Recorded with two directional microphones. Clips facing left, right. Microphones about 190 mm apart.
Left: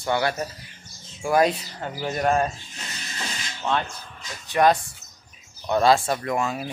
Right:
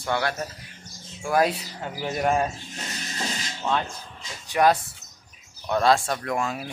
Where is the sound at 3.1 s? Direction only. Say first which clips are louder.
Right 2 dB; 30° right (ahead or behind).